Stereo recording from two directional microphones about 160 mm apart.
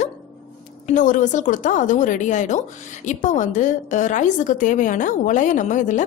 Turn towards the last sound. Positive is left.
turn(degrees=50)  # may be behind; listen again after turning